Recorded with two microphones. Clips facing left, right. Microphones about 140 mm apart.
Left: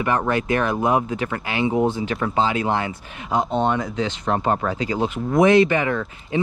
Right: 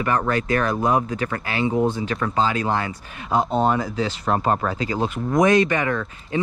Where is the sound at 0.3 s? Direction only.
20° left (ahead or behind).